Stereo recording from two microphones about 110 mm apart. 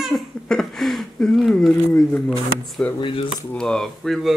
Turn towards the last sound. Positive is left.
turn(degrees=5)  # may be behind; listen again after turning